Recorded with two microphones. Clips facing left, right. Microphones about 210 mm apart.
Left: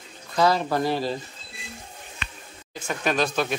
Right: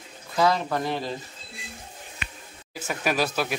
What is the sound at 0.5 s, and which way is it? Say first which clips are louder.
Speech: left 2 dB; 35° left (ahead or behind).